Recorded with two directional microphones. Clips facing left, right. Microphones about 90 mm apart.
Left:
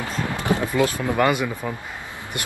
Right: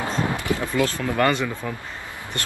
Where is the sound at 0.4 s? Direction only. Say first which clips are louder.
Left 6 dB; 20° left (ahead or behind).